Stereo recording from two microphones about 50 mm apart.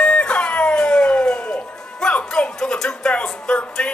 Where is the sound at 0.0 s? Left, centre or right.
Left.